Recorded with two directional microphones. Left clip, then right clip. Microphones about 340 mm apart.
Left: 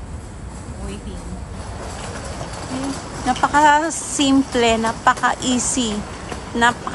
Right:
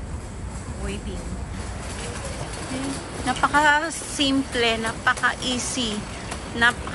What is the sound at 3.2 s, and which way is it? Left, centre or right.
Speech, centre.